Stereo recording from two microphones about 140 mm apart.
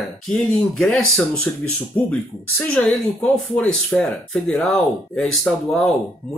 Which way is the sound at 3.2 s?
10° left (ahead or behind).